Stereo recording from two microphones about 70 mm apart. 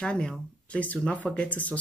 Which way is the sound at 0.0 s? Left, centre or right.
Centre.